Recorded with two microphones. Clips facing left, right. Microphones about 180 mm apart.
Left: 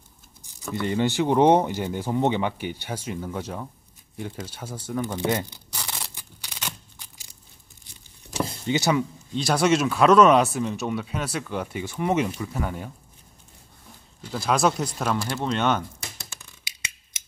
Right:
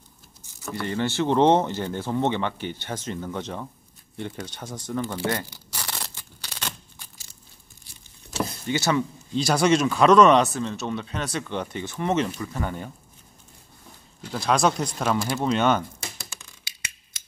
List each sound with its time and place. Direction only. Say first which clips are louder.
0.4 s speech: left 3 dB; 15° left (ahead or behind)
5.1 s tearing: left 2 dB; 15° left (ahead or behind)
8.5 s speech: left 2 dB; 20° left (ahead or behind)
9.3 s speech: right 1 dB; centre (ahead or behind)
14.3 s speech: even; 5° left (ahead or behind)
16.7 s scissors: left 3 dB; 20° left (ahead or behind)